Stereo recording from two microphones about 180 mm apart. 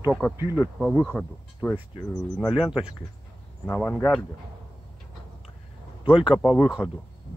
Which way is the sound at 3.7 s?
10° left (ahead or behind).